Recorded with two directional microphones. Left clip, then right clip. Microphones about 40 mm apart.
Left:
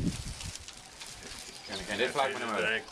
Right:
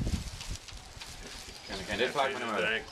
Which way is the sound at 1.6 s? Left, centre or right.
Centre.